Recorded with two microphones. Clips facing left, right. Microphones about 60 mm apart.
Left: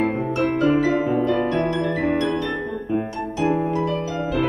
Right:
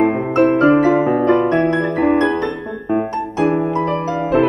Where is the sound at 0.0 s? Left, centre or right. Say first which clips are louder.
Right 7 dB; right.